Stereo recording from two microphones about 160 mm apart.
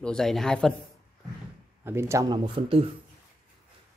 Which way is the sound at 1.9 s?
15° right (ahead or behind).